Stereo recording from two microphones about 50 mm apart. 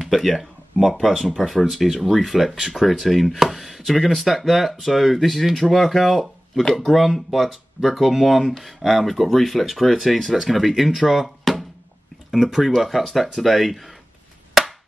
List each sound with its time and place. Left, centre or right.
0.0 s speech: centre